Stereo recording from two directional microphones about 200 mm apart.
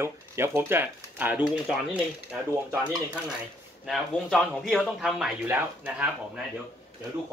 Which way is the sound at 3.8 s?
Centre (ahead or behind).